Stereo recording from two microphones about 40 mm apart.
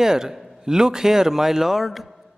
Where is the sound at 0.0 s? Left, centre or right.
Centre.